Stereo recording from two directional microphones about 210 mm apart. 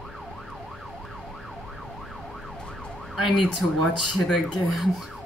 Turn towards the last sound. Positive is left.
turn(degrees=0)  # may be behind; listen again after turning